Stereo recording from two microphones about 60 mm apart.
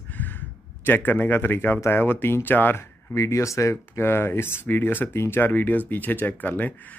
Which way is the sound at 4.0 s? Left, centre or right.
Left.